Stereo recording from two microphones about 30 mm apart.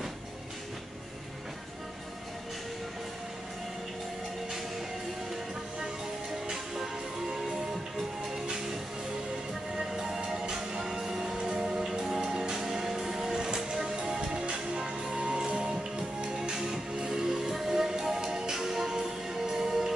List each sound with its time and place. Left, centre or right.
6.5 s music: centre
9.8 s music: right
14.4 s music: right
16.3 s music: centre